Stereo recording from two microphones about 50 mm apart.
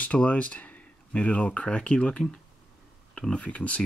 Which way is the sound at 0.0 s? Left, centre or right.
Left.